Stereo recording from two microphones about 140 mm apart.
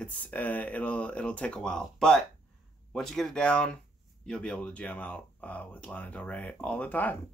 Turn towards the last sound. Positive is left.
turn(degrees=10)  # may be behind; listen again after turning